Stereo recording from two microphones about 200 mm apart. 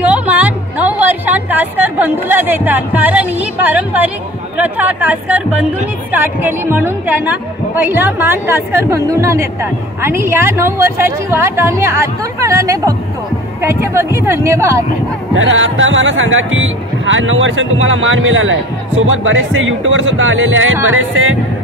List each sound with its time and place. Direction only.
0.0 s a woman's voice: 5° right (ahead or behind)
15.3 s speech: 75° right (ahead or behind)